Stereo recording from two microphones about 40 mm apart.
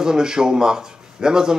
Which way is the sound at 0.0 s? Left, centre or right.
Centre.